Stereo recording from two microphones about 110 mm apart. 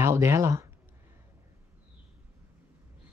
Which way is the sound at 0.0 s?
25° right (ahead or behind).